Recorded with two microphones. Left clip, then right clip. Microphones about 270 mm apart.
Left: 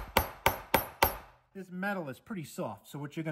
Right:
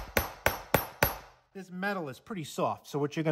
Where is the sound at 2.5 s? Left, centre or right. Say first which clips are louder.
Right 10 dB; right.